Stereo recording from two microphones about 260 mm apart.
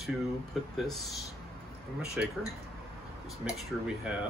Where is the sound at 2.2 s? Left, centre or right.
Centre.